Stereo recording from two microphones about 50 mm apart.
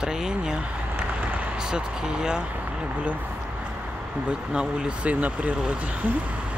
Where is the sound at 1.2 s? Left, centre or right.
Right.